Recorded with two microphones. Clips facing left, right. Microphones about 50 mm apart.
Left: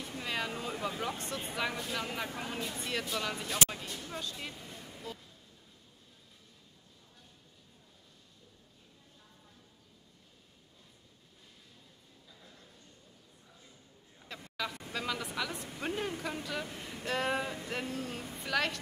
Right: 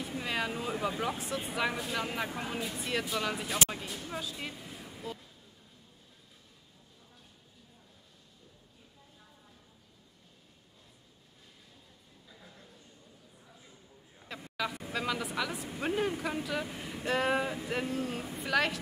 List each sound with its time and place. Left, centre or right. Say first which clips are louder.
0.0 s speech: right 3 dB; centre
12.3 s a sound: right 3 dB; centre
14.2 s speech: right 3 dB; centre